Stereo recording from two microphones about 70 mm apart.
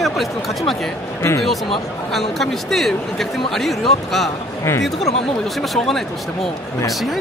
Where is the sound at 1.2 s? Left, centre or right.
Left.